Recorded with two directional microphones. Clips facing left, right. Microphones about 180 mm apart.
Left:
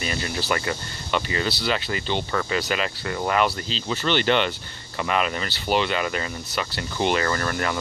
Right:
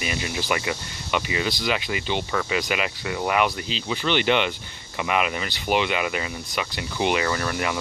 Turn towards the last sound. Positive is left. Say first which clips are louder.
# even
turn(degrees=-10)  # may be behind; listen again after turning